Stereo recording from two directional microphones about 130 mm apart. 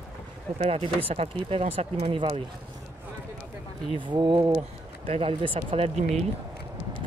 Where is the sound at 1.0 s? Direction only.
45° right (ahead or behind).